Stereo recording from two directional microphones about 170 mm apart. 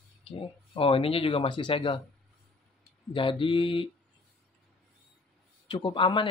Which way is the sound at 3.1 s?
30° left (ahead or behind).